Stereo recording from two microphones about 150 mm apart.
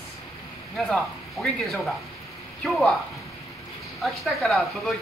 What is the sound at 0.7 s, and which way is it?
A woman's voice, centre (ahead or behind).